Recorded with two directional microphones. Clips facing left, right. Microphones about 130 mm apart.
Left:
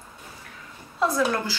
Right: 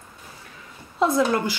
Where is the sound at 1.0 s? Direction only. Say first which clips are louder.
Right 3 dB; 25° right (ahead or behind).